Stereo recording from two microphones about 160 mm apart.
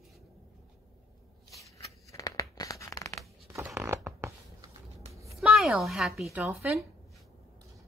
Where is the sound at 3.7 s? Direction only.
15° right (ahead or behind).